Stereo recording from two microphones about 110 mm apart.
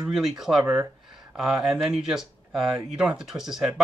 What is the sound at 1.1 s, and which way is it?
Speech, 5° right (ahead or behind).